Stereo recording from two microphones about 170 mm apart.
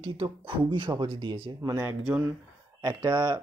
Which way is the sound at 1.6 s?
20° right (ahead or behind).